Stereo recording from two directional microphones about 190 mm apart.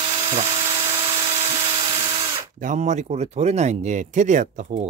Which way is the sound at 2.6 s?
40° right (ahead or behind).